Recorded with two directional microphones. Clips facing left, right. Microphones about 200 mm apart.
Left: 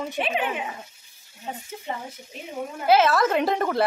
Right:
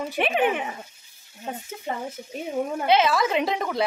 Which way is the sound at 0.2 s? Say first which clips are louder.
Right 5 dB; 60° right (ahead or behind).